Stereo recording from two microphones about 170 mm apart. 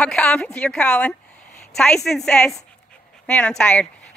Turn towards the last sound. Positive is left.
turn(degrees=5)  # may be behind; listen again after turning